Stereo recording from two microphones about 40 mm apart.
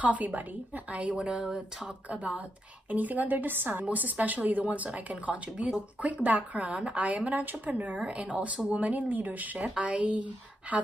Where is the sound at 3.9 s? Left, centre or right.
Right.